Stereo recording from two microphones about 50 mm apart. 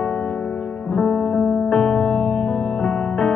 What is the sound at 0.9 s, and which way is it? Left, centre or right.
Music, centre.